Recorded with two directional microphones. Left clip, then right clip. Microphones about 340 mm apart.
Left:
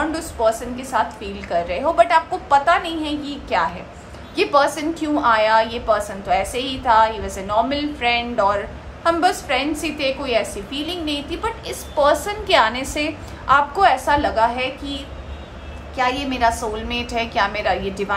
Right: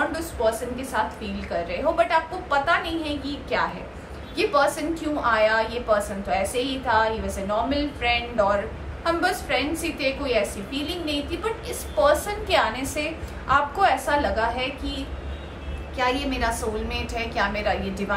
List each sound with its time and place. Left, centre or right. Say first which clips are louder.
0.1 s a sound: left 5 dB; centre
1.5 s a woman's voice: left 5 dB; centre
16.0 s a woman's voice: left 5 dB; centre